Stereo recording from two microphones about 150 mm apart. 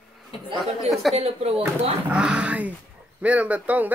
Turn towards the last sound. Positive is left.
turn(degrees=-10)  # may be behind; listen again after turning